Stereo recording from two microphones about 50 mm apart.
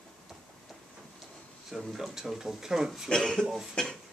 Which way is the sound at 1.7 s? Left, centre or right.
Centre.